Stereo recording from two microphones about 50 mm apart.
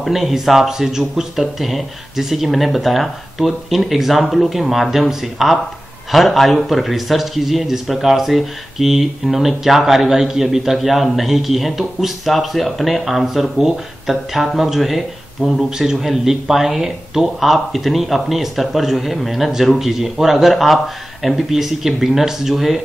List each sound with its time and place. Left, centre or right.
0.0 s speech: centre